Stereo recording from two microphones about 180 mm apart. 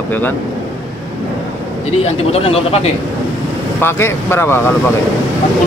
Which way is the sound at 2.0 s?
35° left (ahead or behind).